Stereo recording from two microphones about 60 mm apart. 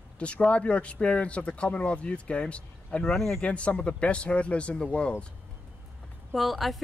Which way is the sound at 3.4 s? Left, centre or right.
Left.